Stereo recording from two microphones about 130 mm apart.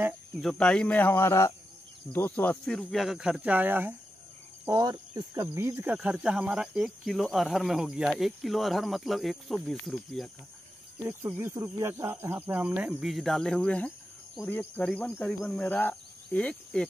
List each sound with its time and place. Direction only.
0.4 s speech: 5° left (ahead or behind); by 3.9 s 15° right (ahead or behind)
4.7 s speech: 30° right (ahead or behind)
5.9 s speech: 5° right (ahead or behind)
11.1 s speech: 15° right (ahead or behind); by 16.8 s 10° left (ahead or behind)